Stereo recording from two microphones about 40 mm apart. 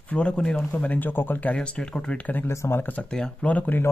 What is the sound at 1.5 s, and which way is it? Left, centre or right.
Speech, left.